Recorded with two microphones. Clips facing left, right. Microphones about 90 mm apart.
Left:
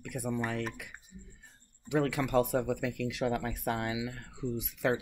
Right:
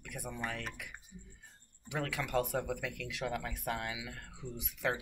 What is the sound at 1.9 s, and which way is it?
Speech, 25° left (ahead or behind).